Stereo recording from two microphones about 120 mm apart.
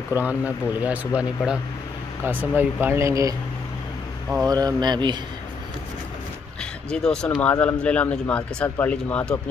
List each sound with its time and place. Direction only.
0.1 s speech: 15° right (ahead or behind)
4.5 s speech: 35° right (ahead or behind)
6.6 s speech: 5° left (ahead or behind)